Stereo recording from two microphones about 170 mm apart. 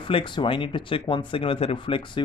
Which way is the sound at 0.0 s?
30° left (ahead or behind).